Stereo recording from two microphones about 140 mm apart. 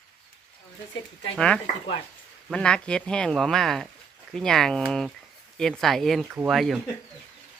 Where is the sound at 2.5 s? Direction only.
5° left (ahead or behind).